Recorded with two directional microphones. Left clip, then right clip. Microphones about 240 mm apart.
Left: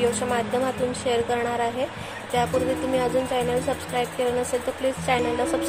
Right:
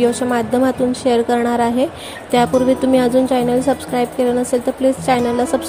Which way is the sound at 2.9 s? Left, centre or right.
Right.